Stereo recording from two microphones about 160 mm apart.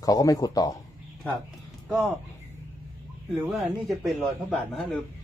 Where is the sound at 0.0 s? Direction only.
20° left (ahead or behind).